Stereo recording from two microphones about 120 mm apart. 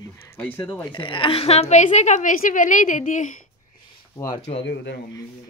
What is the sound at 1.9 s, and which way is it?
A woman's voice, 85° left.